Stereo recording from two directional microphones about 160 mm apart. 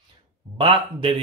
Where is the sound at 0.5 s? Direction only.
30° right (ahead or behind).